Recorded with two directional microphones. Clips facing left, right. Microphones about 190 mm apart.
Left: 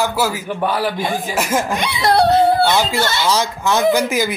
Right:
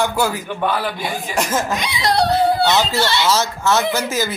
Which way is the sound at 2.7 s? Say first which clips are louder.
Left 1 dB; 10° left (ahead or behind).